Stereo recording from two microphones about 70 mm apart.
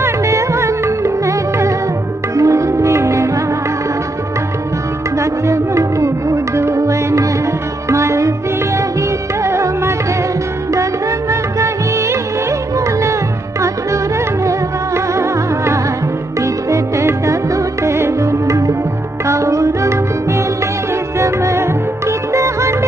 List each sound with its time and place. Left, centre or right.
0.0 s music: right
5.2 s music: right
9.4 s music: right
15.1 s music: right
21.2 s music: right